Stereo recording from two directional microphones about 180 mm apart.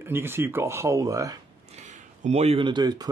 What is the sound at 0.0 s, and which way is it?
Speech, 15° right (ahead or behind).